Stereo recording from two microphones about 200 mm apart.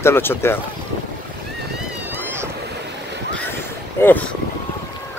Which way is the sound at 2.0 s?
10° right (ahead or behind).